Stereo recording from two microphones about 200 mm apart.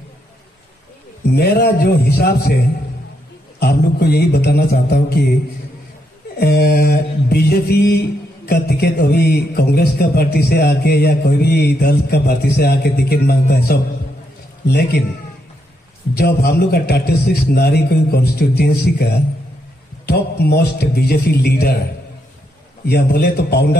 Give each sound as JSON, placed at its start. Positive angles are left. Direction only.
{"t": 1.3, "sound": "speech", "side_deg": 55}
{"t": 3.5, "sound": "speech", "side_deg": 50}
{"t": 6.3, "sound": "speech", "side_deg": 55}
{"t": 16.2, "sound": "speech", "side_deg": 50}
{"t": 20.1, "sound": "speech", "side_deg": 55}
{"t": 22.8, "sound": "speech", "side_deg": 55}